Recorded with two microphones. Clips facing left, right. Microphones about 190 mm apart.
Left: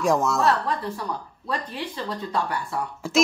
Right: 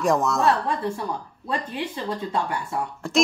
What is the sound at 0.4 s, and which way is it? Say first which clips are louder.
Speech: right 1 dB; 20° right (ahead or behind).